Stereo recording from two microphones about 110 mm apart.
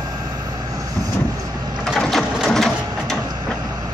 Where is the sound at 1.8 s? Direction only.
5° left (ahead or behind).